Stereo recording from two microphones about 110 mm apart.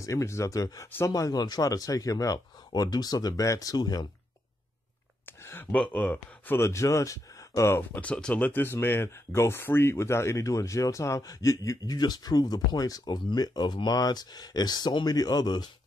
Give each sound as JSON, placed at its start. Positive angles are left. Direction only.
{"t": 0.0, "sound": "speech", "side_deg": 25}
{"t": 5.2, "sound": "a sound", "side_deg": 20}
{"t": 5.8, "sound": "speech", "side_deg": 15}
{"t": 8.0, "sound": "speech", "side_deg": 10}